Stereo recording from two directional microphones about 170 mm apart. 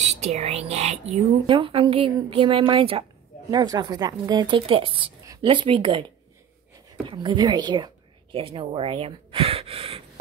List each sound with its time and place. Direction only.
0.0 s a woman's voice: 40° right (ahead or behind)